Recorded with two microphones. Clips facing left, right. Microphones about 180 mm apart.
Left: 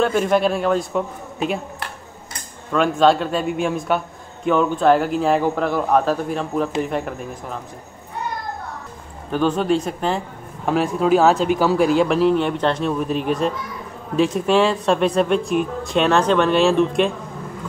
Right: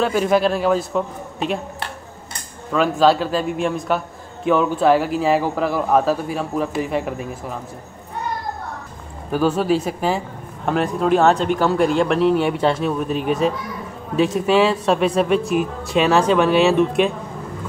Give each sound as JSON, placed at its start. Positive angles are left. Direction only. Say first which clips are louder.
{"t": 0.0, "sound": "speech", "louder": "even", "side_deg": 0}
{"t": 2.7, "sound": "speech", "louder": "even", "side_deg": 0}
{"t": 9.3, "sound": "speech", "louder": "right 1 dB", "side_deg": -5}